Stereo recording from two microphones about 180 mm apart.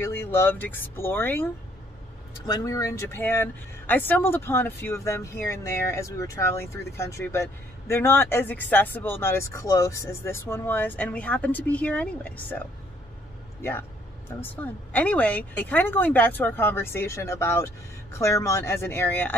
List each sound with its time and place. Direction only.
0.0 s speech: 15° left (ahead or behind)